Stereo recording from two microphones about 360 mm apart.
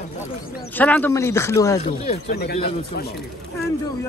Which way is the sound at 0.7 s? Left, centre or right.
Centre.